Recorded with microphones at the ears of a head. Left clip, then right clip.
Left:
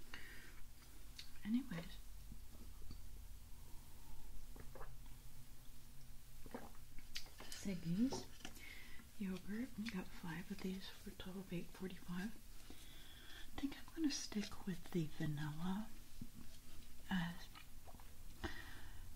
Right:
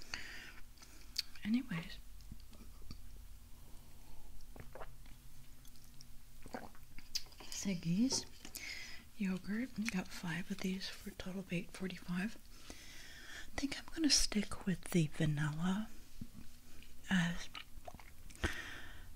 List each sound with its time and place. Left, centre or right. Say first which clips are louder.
0.0 s a sound: right 9 dB; right
1.1 s whispering: right 6 dB; right
7.0 s typing: right 8 dB; right
8.5 s speech: right 10 dB; right
17.0 s chewing: right 8 dB; right